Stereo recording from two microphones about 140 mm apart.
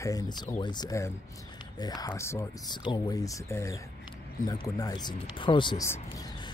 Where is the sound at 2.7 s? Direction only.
30° left (ahead or behind).